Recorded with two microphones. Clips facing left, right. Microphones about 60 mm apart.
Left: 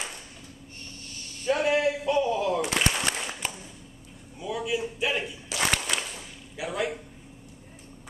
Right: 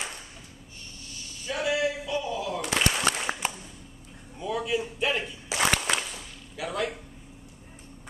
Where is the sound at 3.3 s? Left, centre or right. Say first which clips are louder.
Right 7 dB; right.